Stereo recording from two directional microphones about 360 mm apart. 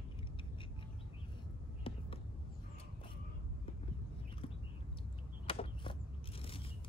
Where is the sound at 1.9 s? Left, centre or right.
Centre.